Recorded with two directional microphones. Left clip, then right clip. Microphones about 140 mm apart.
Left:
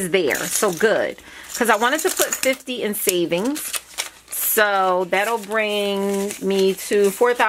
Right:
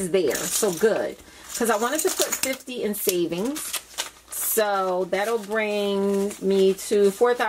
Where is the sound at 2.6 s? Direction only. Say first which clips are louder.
Left 3 dB; 30° left (ahead or behind).